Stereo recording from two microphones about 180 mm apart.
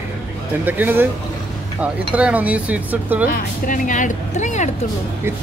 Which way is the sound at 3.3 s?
45° left (ahead or behind).